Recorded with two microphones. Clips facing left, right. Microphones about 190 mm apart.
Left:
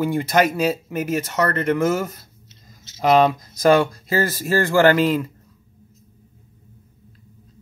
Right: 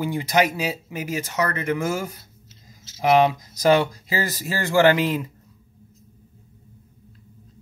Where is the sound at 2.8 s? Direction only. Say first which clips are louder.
Left 2 dB; 10° right (ahead or behind).